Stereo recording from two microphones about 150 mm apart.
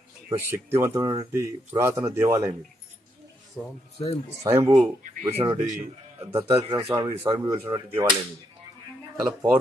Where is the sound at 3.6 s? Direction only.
5° right (ahead or behind).